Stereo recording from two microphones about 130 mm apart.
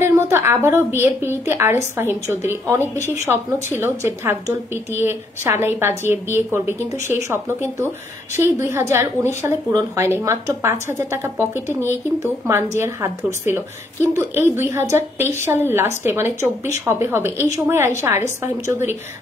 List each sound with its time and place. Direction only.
0.0 s a woman's voice: 20° right (ahead or behind)